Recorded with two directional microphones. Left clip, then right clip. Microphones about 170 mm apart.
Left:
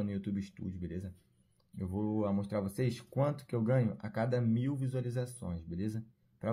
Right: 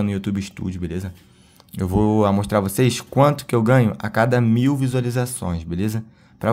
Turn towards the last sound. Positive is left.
turn(degrees=-25)  # may be behind; listen again after turning